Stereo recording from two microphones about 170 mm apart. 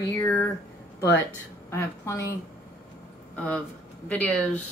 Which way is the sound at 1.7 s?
15° left (ahead or behind).